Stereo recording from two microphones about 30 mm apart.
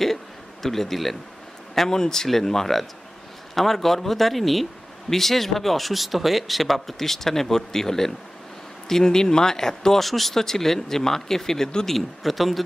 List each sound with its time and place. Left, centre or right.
0.0 s a sound: centre
1.9 s speech: centre
10.0 s speech: centre